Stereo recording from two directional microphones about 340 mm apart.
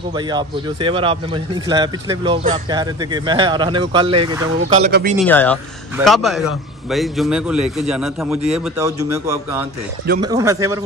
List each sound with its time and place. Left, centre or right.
0.1 s a man's voice: centre
5.2 s a man's voice: centre